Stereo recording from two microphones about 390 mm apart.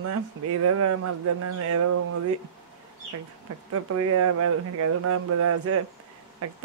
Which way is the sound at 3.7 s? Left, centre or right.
Right.